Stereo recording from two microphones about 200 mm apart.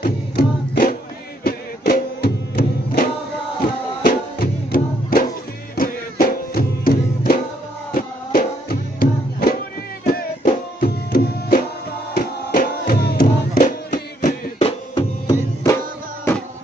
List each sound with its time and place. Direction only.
0.0 s music: 45° left (ahead or behind)
10.0 s tabla: 45° left (ahead or behind)
12.1 s music: 50° left (ahead or behind)
14.6 s music: 20° left (ahead or behind)